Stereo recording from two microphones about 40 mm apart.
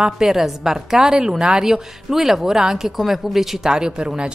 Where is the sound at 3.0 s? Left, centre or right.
Centre; by 4.3 s right.